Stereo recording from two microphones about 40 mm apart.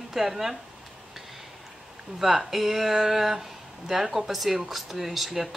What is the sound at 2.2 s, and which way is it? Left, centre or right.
Speech, centre.